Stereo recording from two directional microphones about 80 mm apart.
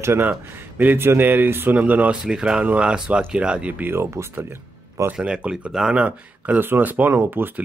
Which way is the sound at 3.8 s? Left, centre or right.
Right.